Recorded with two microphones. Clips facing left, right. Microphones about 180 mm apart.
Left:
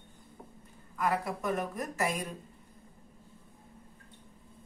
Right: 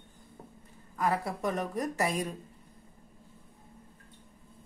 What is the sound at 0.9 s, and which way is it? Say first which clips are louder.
Speech: right 1 dB; 30° right (ahead or behind).